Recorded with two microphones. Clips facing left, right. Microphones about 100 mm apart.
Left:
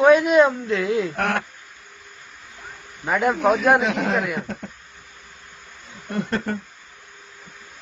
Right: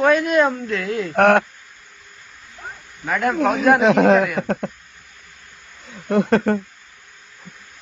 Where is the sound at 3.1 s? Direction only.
10° left (ahead or behind).